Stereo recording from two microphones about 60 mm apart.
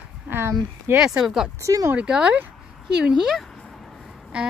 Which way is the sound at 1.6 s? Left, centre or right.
Right.